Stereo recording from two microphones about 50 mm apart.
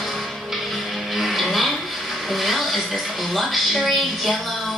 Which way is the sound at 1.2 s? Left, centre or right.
Centre.